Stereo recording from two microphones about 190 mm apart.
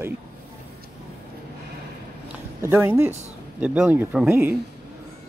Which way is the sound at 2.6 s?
10° right (ahead or behind).